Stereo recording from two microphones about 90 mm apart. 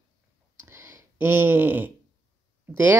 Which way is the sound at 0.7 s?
25° right (ahead or behind).